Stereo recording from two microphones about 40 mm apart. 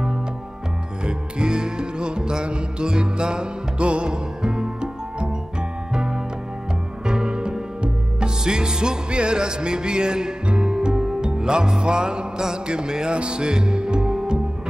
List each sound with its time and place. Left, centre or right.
1.0 s music: right
5.9 s music: right